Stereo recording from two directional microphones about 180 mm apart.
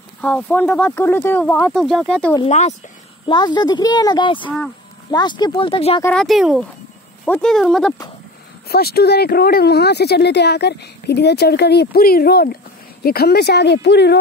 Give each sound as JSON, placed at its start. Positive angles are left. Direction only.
{"t": 0.2, "sound": "speech", "side_deg": 5}
{"t": 2.4, "sound": "speech", "side_deg": 40}
{"t": 3.3, "sound": "speech", "side_deg": 25}
{"t": 6.0, "sound": "speech", "side_deg": 0}
{"t": 8.6, "sound": "speech", "side_deg": 60}